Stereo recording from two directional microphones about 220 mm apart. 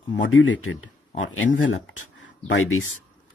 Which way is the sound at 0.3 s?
65° left (ahead or behind).